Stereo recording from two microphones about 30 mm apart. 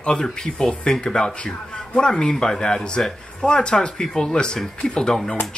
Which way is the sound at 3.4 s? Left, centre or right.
Left.